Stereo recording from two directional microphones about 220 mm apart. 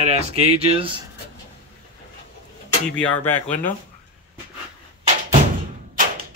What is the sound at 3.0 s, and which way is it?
Speech, 10° left (ahead or behind).